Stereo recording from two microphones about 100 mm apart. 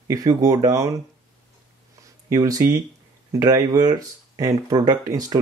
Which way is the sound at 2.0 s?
35° right (ahead or behind).